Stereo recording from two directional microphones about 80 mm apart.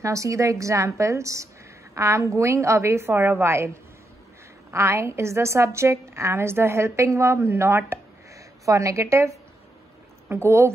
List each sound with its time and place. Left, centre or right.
0.0 s a woman's voice: right